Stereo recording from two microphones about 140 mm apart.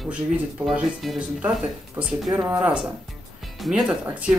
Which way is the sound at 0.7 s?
Centre (ahead or behind).